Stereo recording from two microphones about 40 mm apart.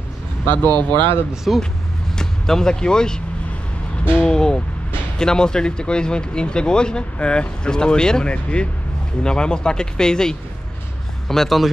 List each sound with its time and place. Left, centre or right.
0.5 s speech: left
1.3 s speech: centre
2.1 s speech: centre
4.3 s speech: centre
11.2 s speech: centre